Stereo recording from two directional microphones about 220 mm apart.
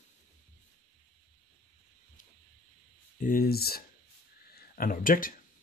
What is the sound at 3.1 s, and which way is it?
Speech, 40° left (ahead or behind).